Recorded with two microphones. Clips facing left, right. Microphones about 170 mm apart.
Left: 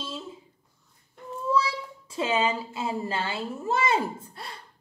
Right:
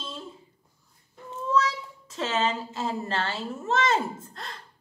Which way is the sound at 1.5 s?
10° left (ahead or behind).